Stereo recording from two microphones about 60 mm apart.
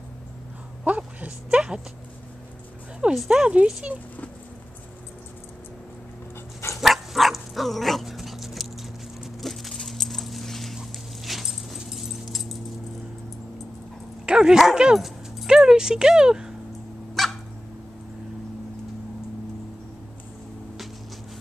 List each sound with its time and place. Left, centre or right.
0.8 s speech: right
3.3 s speech: centre
6.8 s dog: centre
9.4 s keys jangling: centre
10.8 s dog: centre
14.2 s speech: centre
17.1 s dog: centre